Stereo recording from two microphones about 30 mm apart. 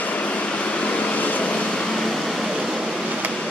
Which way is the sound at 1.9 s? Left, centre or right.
Centre.